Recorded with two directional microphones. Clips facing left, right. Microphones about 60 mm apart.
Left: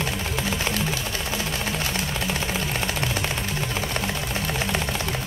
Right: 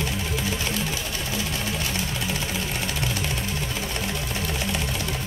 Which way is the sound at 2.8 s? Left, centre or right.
Left.